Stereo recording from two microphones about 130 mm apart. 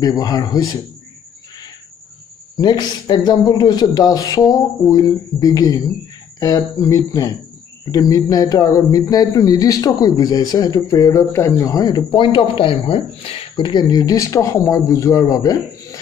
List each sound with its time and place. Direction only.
0.0 s speech: 30° left (ahead or behind)
2.5 s a man's voice: 35° left (ahead or behind)